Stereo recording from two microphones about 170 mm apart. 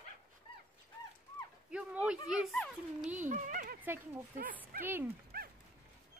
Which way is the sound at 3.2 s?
45° right (ahead or behind).